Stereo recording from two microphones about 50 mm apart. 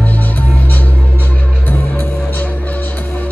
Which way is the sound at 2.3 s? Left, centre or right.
Left.